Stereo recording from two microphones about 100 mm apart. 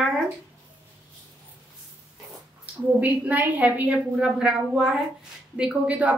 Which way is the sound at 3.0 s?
15° right (ahead or behind).